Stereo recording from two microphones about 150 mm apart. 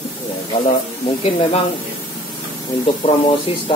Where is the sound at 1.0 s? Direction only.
40° left (ahead or behind).